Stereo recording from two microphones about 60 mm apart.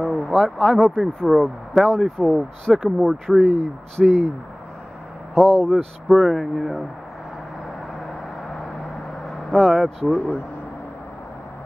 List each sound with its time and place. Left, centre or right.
0.2 s speech: centre
5.3 s speech: centre
6.0 s speech: centre
9.5 s speech: centre
10.0 s speech: centre